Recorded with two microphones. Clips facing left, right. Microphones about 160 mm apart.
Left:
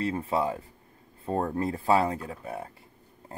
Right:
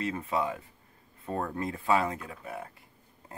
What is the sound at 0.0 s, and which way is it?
Speech, 30° left (ahead or behind).